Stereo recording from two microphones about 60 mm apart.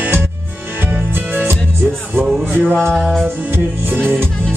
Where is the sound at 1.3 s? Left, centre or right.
Right.